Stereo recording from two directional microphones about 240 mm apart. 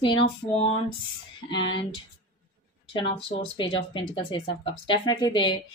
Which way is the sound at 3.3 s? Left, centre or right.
Left.